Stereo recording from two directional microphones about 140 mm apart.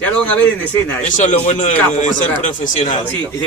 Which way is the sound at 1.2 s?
60° left (ahead or behind).